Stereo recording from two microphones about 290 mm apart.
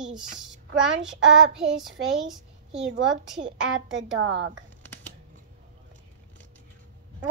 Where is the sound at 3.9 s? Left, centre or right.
Right.